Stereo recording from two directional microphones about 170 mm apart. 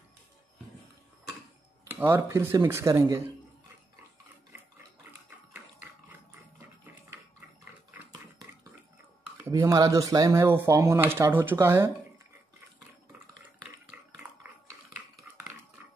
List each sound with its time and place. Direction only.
1.9 s speech: 10° right (ahead or behind)
9.4 s speech: 15° right (ahead or behind)
15.3 s a sound: 10° right (ahead or behind)